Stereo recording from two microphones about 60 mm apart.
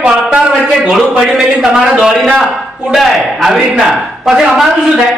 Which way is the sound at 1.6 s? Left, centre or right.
Centre.